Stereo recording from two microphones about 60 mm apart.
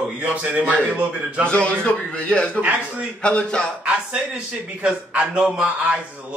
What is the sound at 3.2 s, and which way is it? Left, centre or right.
Speech, centre.